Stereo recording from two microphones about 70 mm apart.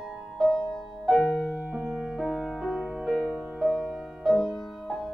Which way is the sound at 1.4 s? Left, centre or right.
Centre.